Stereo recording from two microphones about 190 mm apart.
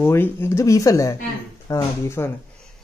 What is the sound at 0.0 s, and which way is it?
Speech, 10° left (ahead or behind).